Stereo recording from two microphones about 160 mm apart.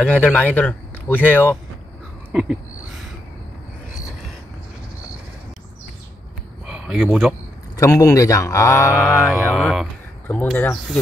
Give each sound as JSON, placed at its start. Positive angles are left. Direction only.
{"t": 0.0, "sound": "speech", "side_deg": 5}
{"t": 6.6, "sound": "a sound", "side_deg": -5}
{"t": 7.7, "sound": "speech", "side_deg": 20}
{"t": 9.2, "sound": "speech", "side_deg": -5}
{"t": 10.2, "sound": "speech", "side_deg": 10}